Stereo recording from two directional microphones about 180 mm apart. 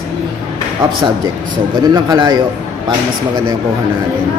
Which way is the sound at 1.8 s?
25° right (ahead or behind).